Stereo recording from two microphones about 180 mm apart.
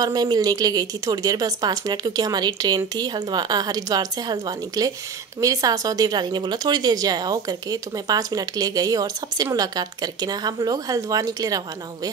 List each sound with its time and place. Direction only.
0.0 s a woman's voice: 20° right (ahead or behind)